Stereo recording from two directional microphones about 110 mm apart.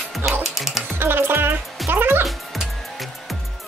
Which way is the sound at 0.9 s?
20° right (ahead or behind).